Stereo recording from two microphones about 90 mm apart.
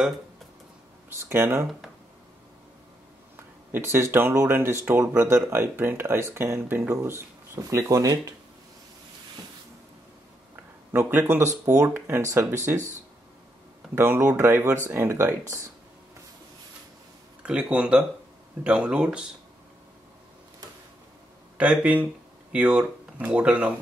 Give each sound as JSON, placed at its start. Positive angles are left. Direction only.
{"t": 1.3, "sound": "speech", "side_deg": -30}
{"t": 3.3, "sound": "speech", "side_deg": -25}
{"t": 10.5, "sound": "a sound", "side_deg": -20}
{"t": 11.6, "sound": "speech", "side_deg": -40}
{"t": 12.4, "sound": "speech", "side_deg": -25}
{"t": 13.9, "sound": "speech", "side_deg": -25}
{"t": 17.4, "sound": "speech", "side_deg": -10}
{"t": 21.5, "sound": "speech", "side_deg": -15}